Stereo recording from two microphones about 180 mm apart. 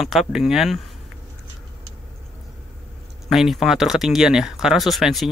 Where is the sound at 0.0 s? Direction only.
Centre (ahead or behind).